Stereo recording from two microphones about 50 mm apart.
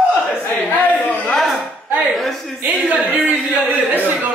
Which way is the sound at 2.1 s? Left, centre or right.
Centre.